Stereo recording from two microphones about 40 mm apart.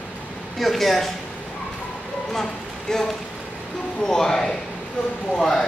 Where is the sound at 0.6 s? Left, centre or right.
Centre.